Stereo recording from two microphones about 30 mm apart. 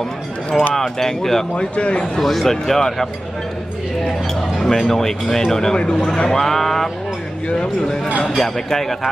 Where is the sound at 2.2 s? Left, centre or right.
Centre.